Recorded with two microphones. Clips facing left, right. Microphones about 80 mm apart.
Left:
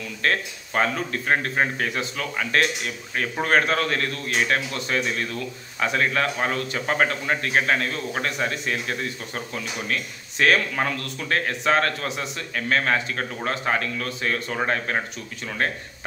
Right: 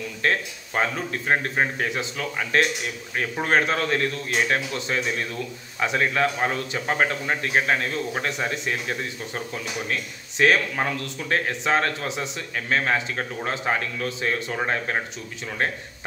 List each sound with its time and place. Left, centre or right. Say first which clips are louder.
0.2 s a man's voice: even; right
15.4 s a man's voice: even; centre